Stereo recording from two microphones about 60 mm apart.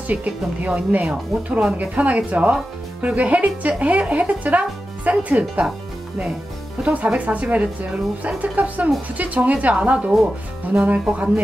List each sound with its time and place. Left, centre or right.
0.0 s speech: right
6.8 s speech: right